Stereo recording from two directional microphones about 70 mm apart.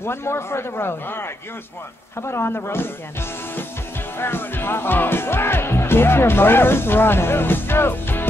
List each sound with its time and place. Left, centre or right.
0.0 s speech: left